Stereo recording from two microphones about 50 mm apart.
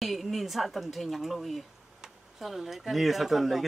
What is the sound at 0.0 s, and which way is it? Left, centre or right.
Speech, centre.